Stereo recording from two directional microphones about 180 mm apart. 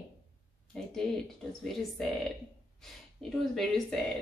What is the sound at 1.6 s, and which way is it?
A woman's voice, centre (ahead or behind).